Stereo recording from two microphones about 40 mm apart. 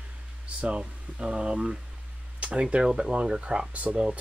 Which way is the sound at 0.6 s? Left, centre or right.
Right.